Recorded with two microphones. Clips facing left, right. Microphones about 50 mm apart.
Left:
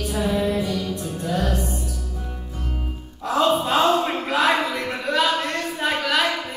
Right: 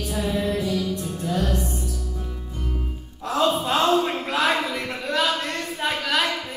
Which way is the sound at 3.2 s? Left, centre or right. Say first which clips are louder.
Left 2 dB; centre.